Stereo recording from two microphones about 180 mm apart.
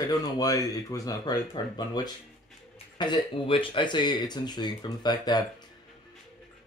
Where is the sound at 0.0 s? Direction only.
20° left (ahead or behind).